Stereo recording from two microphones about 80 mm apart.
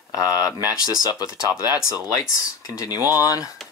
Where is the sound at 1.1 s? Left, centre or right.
Left.